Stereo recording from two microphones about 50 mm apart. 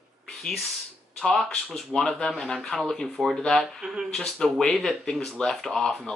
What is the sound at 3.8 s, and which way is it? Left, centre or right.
Speech, centre.